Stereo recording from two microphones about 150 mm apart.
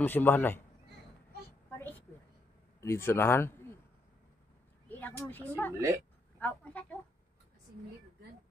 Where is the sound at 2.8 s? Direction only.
15° left (ahead or behind).